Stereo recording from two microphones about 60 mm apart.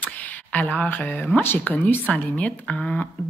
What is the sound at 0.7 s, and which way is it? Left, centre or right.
Speech, left.